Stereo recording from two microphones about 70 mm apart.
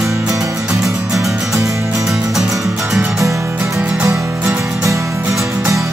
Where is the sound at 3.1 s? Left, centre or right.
Right.